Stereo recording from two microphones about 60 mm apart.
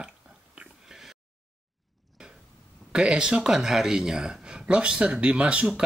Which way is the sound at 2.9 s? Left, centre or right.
Centre.